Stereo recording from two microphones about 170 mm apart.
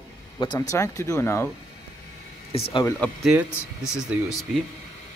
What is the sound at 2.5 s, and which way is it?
Speech, 35° left (ahead or behind).